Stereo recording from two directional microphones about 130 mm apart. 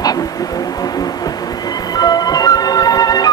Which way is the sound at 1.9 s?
30° left (ahead or behind).